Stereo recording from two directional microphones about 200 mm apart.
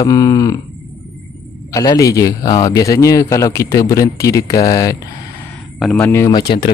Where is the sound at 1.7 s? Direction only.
20° left (ahead or behind).